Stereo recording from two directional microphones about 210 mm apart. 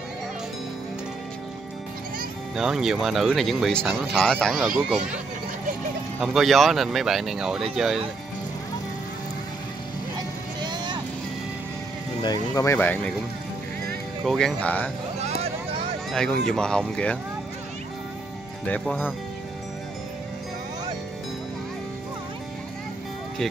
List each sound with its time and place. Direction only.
2.5 s speech: centre (ahead or behind)
6.2 s speech: centre (ahead or behind)
10.6 s vehicle: 20° right (ahead or behind)
12.2 s speech: 20° left (ahead or behind)
14.2 s speech: centre (ahead or behind)
15.1 s vehicle: 30° right (ahead or behind)
16.1 s speech: 5° left (ahead or behind)
18.7 s speech: 10° left (ahead or behind)